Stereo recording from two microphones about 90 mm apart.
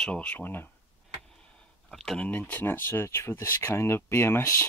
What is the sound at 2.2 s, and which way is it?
Speech, 15° left (ahead or behind).